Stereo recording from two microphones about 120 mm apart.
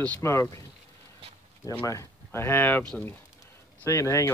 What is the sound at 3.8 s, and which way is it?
Speech, 25° left (ahead or behind).